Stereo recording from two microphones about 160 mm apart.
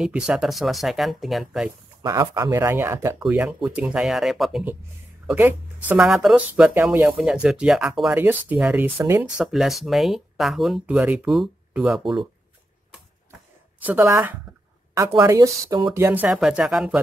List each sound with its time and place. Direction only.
0.0 s speech: 5° right (ahead or behind)
2.0 s speech: 25° right (ahead or behind)
2.5 s speech: 15° right (ahead or behind)
9.4 s speech: centre (ahead or behind)
14.0 s speech: 20° right (ahead or behind)
16.3 s speech: 5° right (ahead or behind)